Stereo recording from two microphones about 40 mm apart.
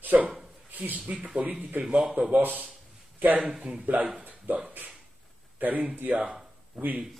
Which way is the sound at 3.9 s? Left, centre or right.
Right.